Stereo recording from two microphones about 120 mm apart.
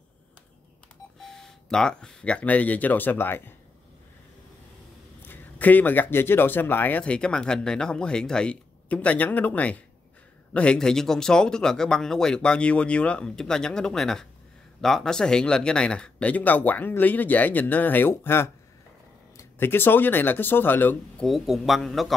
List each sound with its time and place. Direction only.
1.2 s speech: 5° left (ahead or behind)
5.2 s speech: 15° left (ahead or behind)
21.2 s speech: centre (ahead or behind)